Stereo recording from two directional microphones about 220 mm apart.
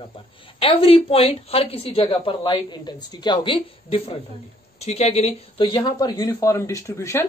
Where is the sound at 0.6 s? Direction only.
25° left (ahead or behind).